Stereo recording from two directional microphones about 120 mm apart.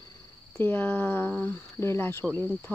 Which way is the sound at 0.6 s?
15° left (ahead or behind).